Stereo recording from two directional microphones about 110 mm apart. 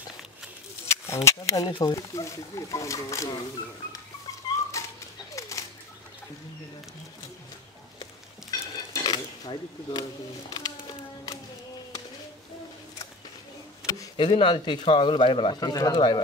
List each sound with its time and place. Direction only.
0.8 s speech: 25° left (ahead or behind)
4.7 s bird: 30° left (ahead or behind)
5.3 s bird flight: 30° left (ahead or behind)
8.0 s stir: 40° left (ahead or behind)
10.5 s a sound: 40° left (ahead or behind)
14.1 s a man's voice: 45° left (ahead or behind)
15.7 s speech: 35° left (ahead or behind)